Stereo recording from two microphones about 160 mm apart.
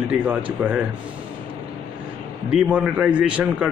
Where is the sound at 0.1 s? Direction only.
10° right (ahead or behind).